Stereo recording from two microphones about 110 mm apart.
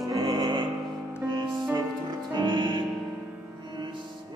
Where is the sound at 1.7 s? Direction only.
40° right (ahead or behind).